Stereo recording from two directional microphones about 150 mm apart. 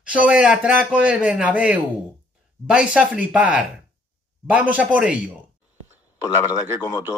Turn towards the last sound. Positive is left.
turn(degrees=20)  # may be behind; listen again after turning